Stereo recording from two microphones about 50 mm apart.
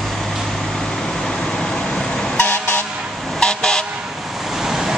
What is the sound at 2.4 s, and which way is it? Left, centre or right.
Vehicle, left.